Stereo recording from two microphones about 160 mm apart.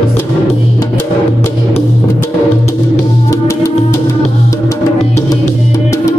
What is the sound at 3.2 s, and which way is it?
Music, 20° left (ahead or behind).